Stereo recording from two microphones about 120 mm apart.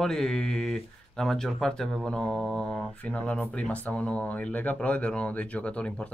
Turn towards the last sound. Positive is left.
turn(degrees=10)  # may be behind; listen again after turning